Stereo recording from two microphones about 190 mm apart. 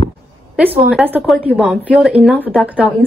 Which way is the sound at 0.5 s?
5° right (ahead or behind).